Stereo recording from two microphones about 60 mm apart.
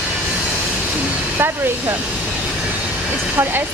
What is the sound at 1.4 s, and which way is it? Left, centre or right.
Speech, right.